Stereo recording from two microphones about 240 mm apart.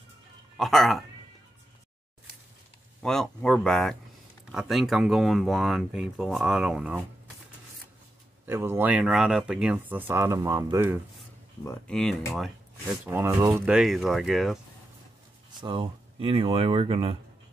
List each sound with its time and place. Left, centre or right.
0.6 s speech: centre
3.0 s speech: centre
8.5 s speech: centre
11.6 s speech: centre
13.0 s speech: centre
15.6 s speech: right